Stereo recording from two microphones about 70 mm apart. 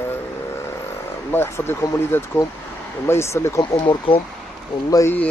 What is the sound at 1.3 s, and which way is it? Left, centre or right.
Speech, left.